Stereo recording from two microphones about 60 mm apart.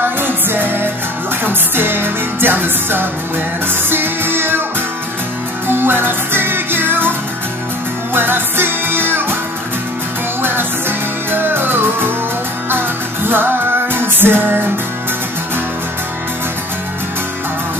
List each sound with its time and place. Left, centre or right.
0.0 s music: right
5.7 s music: right
10.4 s music: right